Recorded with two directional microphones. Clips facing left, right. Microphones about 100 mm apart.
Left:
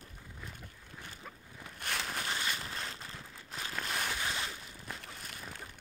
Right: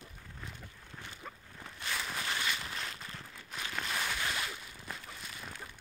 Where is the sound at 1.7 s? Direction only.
50° left (ahead or behind).